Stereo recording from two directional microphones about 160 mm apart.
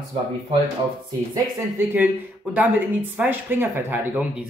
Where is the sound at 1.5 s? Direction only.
15° right (ahead or behind).